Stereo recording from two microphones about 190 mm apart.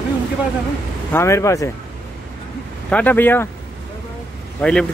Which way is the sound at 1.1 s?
15° left (ahead or behind).